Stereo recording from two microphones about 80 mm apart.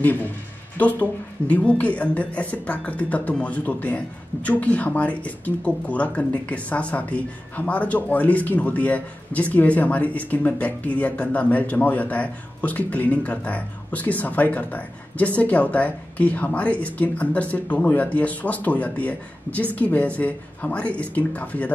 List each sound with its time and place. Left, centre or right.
0.0 s speech: left